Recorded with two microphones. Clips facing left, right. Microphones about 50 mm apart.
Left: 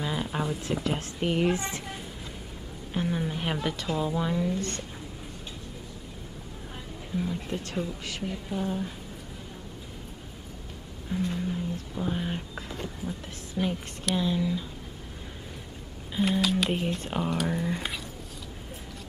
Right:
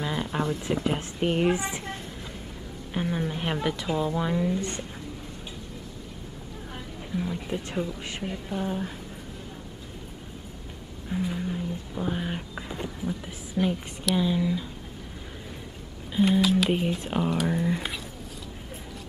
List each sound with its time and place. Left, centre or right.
0.0 s a sound: centre
0.8 s a woman's voice: centre
2.9 s a woman's voice: centre
7.2 s a woman's voice: centre
11.1 s speech: centre
13.6 s speech: centre
16.1 s speech: centre